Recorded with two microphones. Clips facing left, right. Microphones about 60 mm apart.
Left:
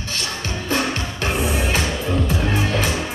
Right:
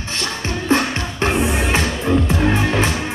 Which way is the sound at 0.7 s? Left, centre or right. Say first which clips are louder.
Right 4 dB; right.